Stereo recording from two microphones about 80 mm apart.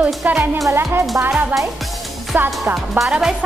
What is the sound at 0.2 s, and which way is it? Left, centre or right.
A woman's voice, right.